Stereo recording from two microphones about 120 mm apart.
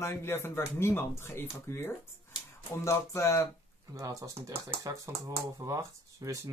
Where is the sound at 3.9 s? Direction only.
25° right (ahead or behind).